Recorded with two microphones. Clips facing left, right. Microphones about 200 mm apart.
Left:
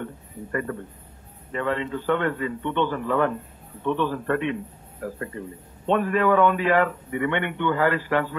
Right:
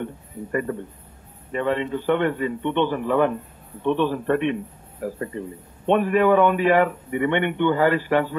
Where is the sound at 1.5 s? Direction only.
15° right (ahead or behind).